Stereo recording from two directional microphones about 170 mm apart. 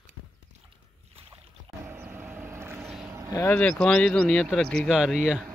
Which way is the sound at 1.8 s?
10° right (ahead or behind).